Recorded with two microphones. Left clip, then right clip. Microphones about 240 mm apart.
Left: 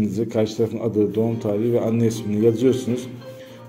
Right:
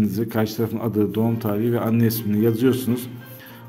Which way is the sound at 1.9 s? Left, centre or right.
Right.